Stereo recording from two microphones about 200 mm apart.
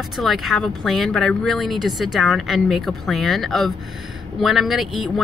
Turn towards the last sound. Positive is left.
turn(degrees=0)  # may be behind; listen again after turning